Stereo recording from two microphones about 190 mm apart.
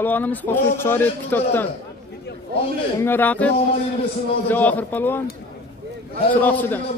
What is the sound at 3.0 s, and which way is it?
A man's voice, 10° left (ahead or behind).